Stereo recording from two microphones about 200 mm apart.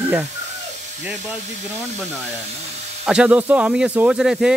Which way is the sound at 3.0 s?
5° right (ahead or behind).